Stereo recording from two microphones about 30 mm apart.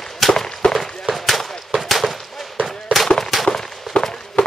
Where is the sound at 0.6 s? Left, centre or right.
Left.